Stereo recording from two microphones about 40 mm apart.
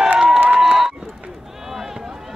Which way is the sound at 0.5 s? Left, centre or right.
Centre.